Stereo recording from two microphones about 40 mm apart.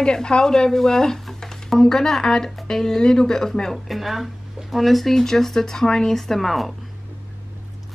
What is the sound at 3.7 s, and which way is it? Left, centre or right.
Speech, centre.